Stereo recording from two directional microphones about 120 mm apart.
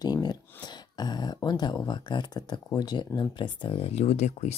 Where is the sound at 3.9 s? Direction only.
65° left (ahead or behind).